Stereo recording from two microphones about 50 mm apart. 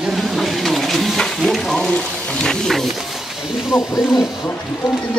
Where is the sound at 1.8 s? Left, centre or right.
Centre.